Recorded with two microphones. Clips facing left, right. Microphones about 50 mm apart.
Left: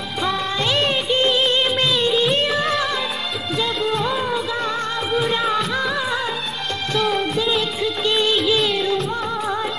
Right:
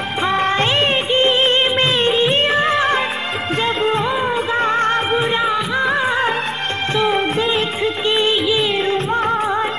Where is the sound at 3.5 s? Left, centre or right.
Right.